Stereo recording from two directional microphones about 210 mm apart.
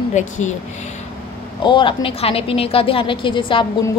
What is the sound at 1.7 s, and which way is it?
A woman's voice, 25° left (ahead or behind).